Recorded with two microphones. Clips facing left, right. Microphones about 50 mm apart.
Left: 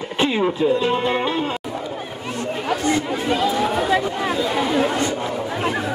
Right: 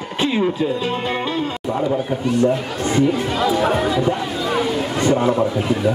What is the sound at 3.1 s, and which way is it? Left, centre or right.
Speech, centre.